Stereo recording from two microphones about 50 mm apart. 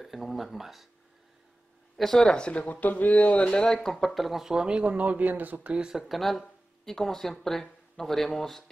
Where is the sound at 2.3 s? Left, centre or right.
Left.